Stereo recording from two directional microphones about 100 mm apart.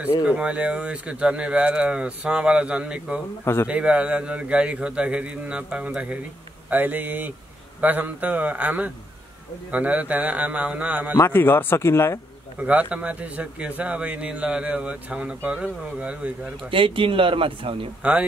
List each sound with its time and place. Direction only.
0.3 s a man's voice: 10° right (ahead or behind)
11.1 s speech: 20° left (ahead or behind)
12.5 s a man's voice: 15° right (ahead or behind)
16.7 s speech: 60° right (ahead or behind)